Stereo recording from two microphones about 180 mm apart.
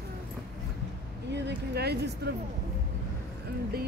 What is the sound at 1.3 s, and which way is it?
Speech, 70° right (ahead or behind).